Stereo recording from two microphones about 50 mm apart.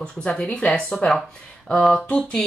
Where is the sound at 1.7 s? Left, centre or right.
Centre.